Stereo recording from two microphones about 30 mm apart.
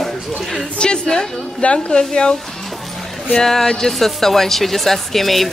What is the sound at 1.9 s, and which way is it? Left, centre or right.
Speech, left.